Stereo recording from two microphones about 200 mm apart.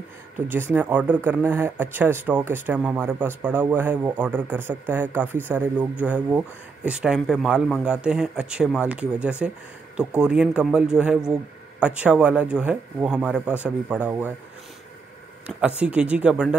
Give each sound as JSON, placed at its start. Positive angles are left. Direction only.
{"t": 0.5, "sound": "speech", "side_deg": -10}
{"t": 15.8, "sound": "speech", "side_deg": -5}